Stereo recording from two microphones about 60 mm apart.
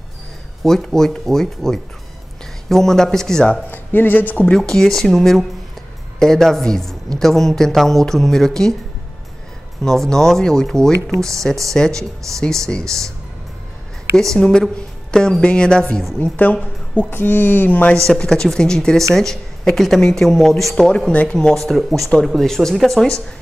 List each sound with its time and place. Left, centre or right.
0.8 s a woman's voice: centre
3.7 s speech: left
4.6 s a woman's voice: centre
9.8 s a woman's voice: centre
14.1 s a woman's voice: centre
16.2 s a woman's voice: left
18.0 s a woman's voice: centre